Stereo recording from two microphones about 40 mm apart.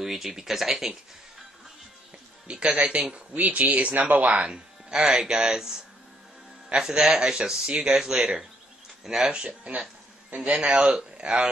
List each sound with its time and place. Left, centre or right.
0.0 s speech: centre
2.4 s a man's voice: right
4.5 s speech: right
5.1 s speech: centre
9.3 s a man's voice: right